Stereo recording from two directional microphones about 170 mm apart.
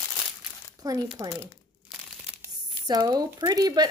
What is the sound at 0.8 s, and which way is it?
Speech, 25° right (ahead or behind).